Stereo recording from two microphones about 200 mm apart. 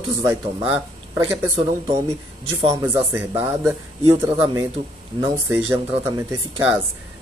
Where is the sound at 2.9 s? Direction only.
10° right (ahead or behind).